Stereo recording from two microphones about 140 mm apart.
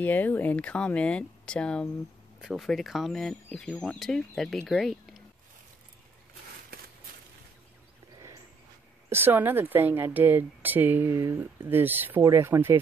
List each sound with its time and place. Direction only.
0.0 s speech: 15° left (ahead or behind)
9.1 s a woman's voice: 15° right (ahead or behind)